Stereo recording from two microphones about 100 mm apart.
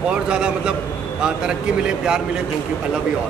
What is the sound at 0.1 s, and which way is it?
Speech, 10° right (ahead or behind).